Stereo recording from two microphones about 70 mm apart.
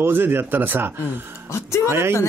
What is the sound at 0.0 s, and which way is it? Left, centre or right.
A man's voice, right.